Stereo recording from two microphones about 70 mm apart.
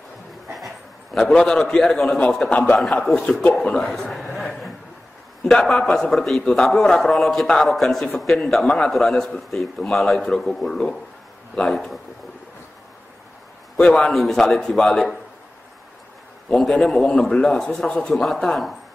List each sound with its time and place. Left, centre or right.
0.5 s a sound: centre
1.2 s a man's voice: centre
2.1 s a man's voice: centre
3.2 s a man's voice: centre
3.6 s a sound: centre
5.4 s a man's voice: centre
13.7 s a man's voice: centre
16.5 s a man's voice: centre